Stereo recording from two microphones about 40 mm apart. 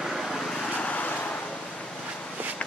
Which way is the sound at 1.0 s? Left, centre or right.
Left.